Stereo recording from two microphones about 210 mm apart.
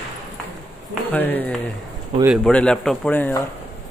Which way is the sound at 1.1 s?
10° left (ahead or behind).